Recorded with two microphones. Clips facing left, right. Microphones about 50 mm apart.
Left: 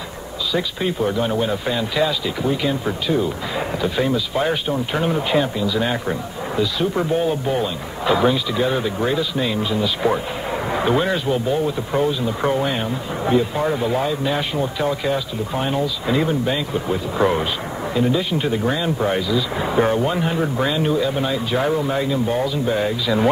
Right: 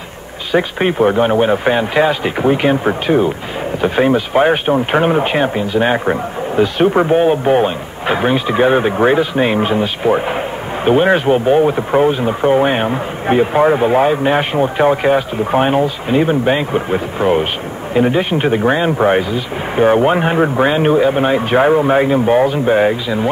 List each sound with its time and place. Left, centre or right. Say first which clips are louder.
0.5 s a man's voice: right 8 dB; right